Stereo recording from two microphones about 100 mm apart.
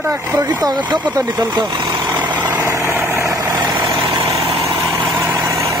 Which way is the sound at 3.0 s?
30° right (ahead or behind).